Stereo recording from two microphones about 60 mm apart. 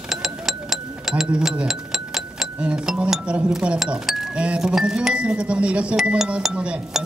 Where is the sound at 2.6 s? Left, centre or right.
Centre.